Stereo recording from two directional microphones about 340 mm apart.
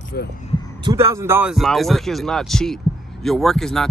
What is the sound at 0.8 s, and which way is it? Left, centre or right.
Speech, centre.